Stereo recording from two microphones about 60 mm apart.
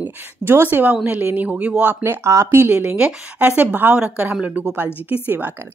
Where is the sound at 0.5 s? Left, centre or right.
Right.